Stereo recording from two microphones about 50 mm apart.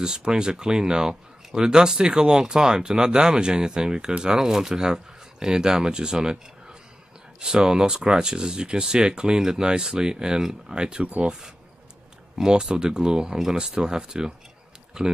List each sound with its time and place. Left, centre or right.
0.0 s speech: centre